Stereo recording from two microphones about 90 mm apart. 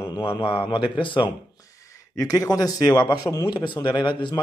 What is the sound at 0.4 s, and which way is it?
Speech, 75° left (ahead or behind).